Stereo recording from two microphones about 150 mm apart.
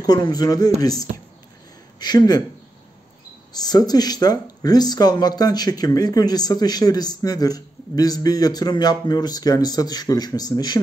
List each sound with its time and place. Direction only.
0.0 s speech: 25° left (ahead or behind)
3.5 s speech: 25° left (ahead or behind)